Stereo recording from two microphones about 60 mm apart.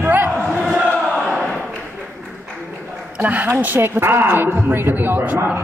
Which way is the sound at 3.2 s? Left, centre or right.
Right.